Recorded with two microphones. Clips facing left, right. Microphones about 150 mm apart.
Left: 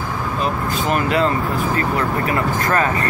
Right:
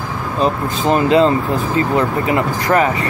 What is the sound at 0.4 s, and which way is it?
Speech, 30° right (ahead or behind).